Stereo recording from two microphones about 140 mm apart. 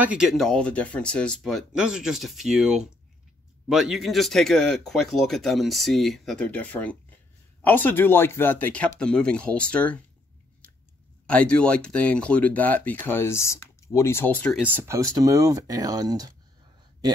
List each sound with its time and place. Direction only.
0.0 s speech: 5° right (ahead or behind); by 9.9 s 10° left (ahead or behind)
11.2 s speech: 10° left (ahead or behind)
14.6 s speech: 15° right (ahead or behind)